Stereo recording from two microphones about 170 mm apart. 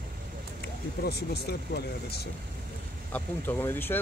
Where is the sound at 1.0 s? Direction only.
70° left (ahead or behind).